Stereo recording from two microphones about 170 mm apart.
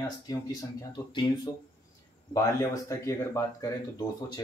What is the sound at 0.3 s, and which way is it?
Speech, 20° left (ahead or behind).